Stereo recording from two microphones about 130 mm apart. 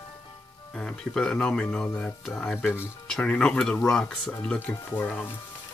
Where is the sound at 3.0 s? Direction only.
5° left (ahead or behind).